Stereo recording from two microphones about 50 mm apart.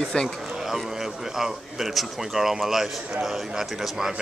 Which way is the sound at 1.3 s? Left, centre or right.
Centre.